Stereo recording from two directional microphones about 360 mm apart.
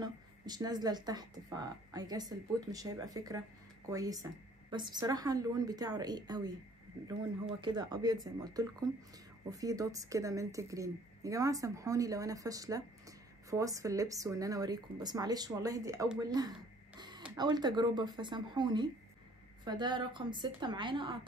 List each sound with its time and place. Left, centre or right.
0.0 s a woman's voice: centre